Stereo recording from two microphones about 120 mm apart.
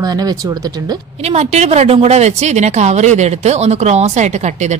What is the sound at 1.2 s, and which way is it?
A woman's voice, 65° right (ahead or behind).